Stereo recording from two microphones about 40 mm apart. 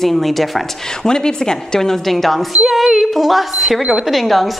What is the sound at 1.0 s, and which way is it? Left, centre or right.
A woman's voice, centre.